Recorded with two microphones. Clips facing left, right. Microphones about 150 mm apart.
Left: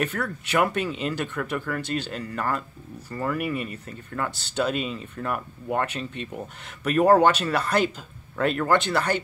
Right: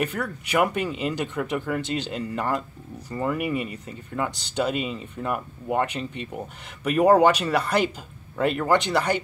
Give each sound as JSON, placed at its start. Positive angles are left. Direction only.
{"t": 0.0, "sound": "speech", "side_deg": -10}